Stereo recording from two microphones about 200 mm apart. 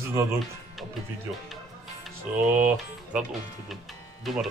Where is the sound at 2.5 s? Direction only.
10° right (ahead or behind).